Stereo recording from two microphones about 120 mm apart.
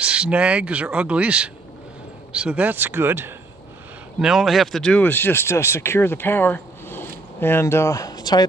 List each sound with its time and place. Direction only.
0.0 s speech: 10° right (ahead or behind)
4.2 s speech: 5° right (ahead or behind); by 8.5 s 35° left (ahead or behind)